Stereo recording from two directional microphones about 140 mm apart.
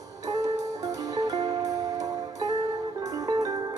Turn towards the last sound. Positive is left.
turn(degrees=-25)  # may be behind; listen again after turning